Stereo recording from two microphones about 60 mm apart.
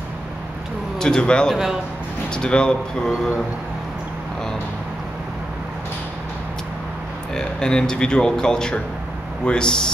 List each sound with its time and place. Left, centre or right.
0.9 s speech: centre
1.5 s speech: centre
2.3 s speech: centre
7.3 s speech: centre